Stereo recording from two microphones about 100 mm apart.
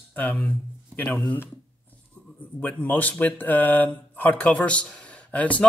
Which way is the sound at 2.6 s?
20° left (ahead or behind).